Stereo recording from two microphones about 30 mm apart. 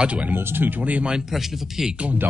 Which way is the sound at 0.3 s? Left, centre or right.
Right.